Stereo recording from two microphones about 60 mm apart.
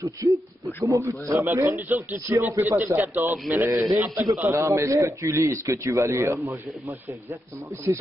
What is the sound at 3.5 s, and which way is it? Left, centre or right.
A man's voice, right.